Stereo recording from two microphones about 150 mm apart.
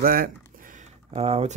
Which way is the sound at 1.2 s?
40° right (ahead or behind).